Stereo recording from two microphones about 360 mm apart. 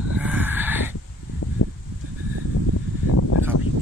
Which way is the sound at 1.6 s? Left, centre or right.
Left.